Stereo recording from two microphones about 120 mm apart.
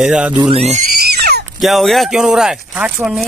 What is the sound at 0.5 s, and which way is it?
Speech, 60° right (ahead or behind).